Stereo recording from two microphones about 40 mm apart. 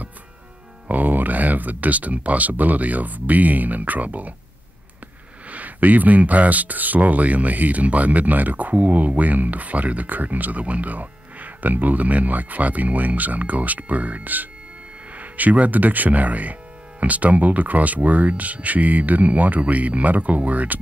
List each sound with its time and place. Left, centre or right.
0.8 s speech: right
5.5 s speech: right